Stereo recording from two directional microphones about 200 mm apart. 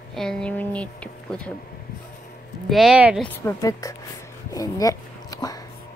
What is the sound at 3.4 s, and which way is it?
Speech, 15° left (ahead or behind).